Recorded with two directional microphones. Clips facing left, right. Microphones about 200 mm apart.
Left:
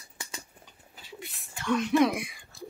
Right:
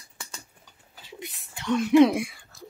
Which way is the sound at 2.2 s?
20° left (ahead or behind).